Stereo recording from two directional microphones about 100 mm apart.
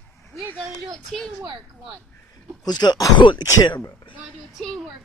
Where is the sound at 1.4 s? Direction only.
45° right (ahead or behind).